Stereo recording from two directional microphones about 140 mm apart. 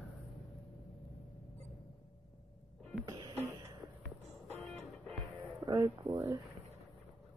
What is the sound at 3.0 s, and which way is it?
Music, 25° right (ahead or behind).